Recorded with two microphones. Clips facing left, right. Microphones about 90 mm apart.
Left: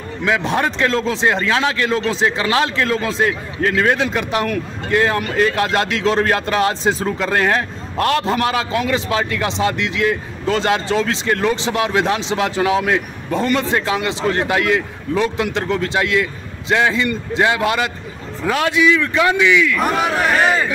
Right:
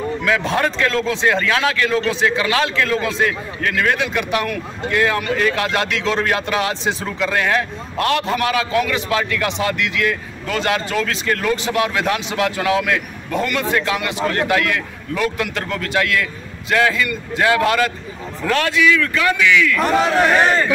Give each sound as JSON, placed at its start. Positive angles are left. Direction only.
{"t": 0.2, "sound": "a man's voice", "side_deg": 25}